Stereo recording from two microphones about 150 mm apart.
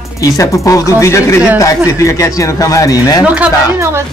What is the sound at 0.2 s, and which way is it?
Speech, 20° left (ahead or behind).